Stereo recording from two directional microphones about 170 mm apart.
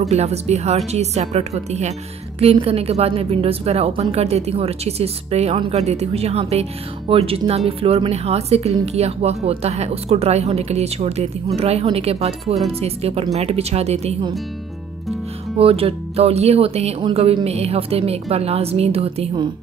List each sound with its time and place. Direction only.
0.0 s a woman's voice: 40° right (ahead or behind)
15.6 s a woman's voice: 35° right (ahead or behind)